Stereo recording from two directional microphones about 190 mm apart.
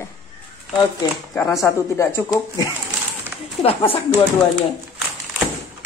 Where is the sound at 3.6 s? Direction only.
30° left (ahead or behind).